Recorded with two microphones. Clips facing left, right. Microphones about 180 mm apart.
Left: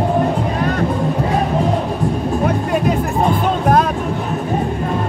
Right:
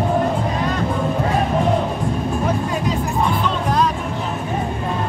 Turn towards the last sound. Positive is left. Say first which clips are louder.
# left 4 dB
turn(degrees=55)  # may be behind; listen again after turning